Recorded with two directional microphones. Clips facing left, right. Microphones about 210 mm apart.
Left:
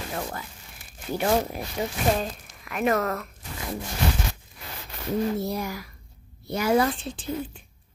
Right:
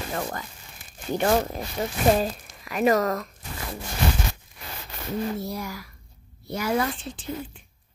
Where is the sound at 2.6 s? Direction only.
Centre (ahead or behind).